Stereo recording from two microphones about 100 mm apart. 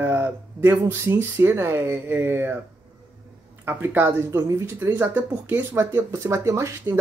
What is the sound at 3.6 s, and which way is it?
Speech, 25° right (ahead or behind).